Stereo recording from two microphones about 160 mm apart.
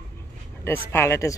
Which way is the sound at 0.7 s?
15° left (ahead or behind).